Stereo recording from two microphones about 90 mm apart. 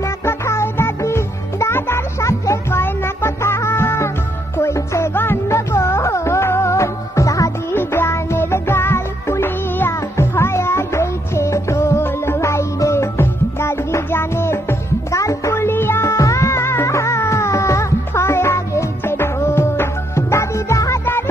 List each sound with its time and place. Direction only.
0.2 s music: 30° left (ahead or behind)
7.7 s music: 25° left (ahead or behind)
15.5 s music: 25° left (ahead or behind)